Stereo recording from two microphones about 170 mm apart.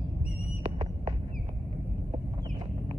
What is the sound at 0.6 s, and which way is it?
Fireworks, 35° right (ahead or behind).